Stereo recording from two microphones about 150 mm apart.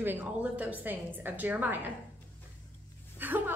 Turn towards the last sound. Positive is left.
turn(degrees=-15)  # may be behind; listen again after turning